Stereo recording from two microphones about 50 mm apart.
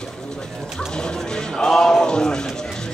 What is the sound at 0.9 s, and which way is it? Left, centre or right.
Speech, centre.